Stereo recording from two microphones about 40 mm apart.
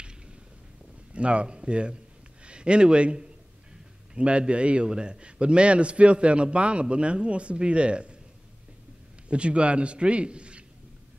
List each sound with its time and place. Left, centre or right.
1.1 s a man's voice: right
9.3 s a man's voice: right